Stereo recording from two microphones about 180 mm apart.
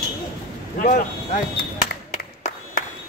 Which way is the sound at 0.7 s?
50° left (ahead or behind).